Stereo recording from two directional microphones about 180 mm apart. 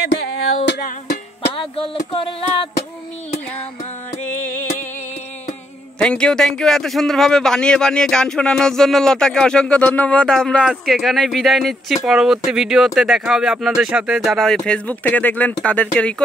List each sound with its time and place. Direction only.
0.7 s music: 60° left (ahead or behind)
1.8 s a sound: 30° left (ahead or behind)
5.9 s a man's voice: 5° left (ahead or behind)